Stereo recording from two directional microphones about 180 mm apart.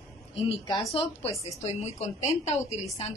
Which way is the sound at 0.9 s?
30° left (ahead or behind).